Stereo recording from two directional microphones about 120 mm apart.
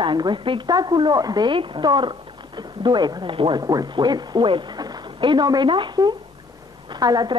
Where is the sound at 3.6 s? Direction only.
30° right (ahead or behind).